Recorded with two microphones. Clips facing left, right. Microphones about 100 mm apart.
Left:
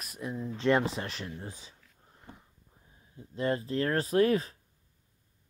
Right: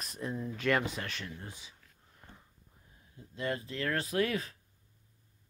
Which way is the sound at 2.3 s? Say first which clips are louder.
Left 6 dB; 15° left (ahead or behind).